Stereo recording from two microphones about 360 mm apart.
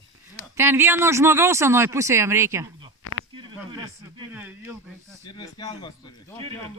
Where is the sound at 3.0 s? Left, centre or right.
Left.